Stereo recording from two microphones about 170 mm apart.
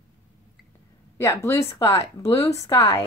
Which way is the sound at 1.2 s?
15° left (ahead or behind).